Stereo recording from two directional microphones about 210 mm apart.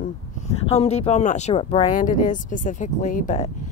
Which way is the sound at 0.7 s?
30° left (ahead or behind).